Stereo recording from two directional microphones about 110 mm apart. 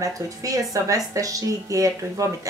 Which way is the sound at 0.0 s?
30° right (ahead or behind).